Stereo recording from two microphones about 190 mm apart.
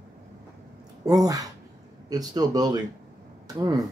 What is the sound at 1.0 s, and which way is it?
Speech, 20° right (ahead or behind).